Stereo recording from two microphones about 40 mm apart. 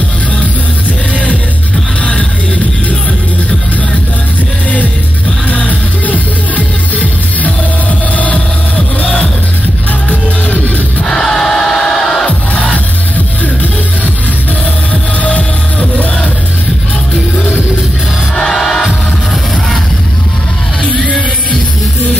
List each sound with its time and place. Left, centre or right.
2.0 s music: left
5.5 s music: left
11.1 s music: centre
12.3 s music: left
18.5 s music: centre